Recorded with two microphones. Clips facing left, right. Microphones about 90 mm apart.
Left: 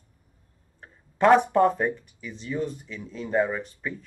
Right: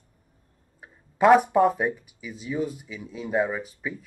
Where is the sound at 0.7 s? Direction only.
10° right (ahead or behind).